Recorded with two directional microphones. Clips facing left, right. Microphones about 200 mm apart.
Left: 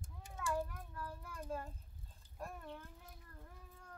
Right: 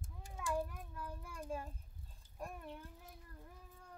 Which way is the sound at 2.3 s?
15° right (ahead or behind).